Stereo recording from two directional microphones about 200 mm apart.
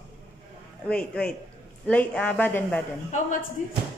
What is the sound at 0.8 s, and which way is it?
A man's voice, 5° left (ahead or behind).